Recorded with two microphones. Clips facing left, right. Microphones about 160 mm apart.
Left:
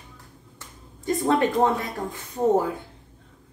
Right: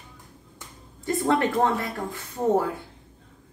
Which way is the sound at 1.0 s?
15° left (ahead or behind).